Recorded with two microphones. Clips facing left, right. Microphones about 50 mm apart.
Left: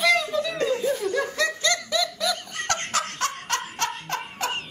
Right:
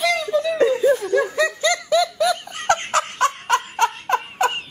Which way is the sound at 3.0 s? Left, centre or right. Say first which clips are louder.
Right 8 dB; centre.